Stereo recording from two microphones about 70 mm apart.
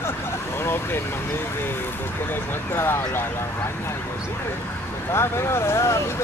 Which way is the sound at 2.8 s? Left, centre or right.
Left.